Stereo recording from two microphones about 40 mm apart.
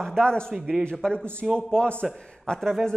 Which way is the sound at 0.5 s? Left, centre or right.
Centre.